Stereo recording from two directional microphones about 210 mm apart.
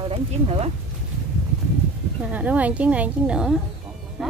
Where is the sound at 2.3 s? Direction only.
5° right (ahead or behind).